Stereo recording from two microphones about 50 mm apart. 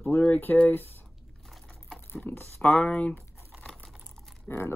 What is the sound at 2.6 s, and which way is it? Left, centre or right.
Speech, left.